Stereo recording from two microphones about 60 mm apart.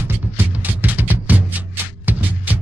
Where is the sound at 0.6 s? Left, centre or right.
Right.